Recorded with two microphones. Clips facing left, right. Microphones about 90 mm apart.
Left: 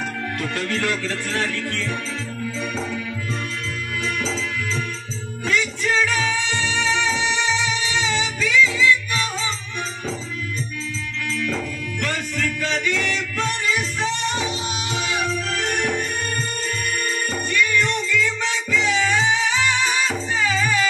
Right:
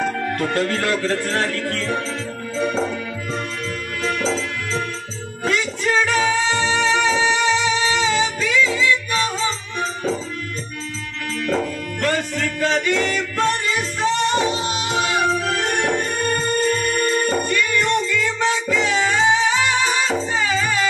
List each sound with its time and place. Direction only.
0.0 s music: 35° right (ahead or behind)
4.0 s music: 40° right (ahead or behind)
11.3 s music: 40° right (ahead or behind)